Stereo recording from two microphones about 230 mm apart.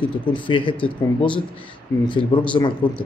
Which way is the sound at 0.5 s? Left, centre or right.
Left.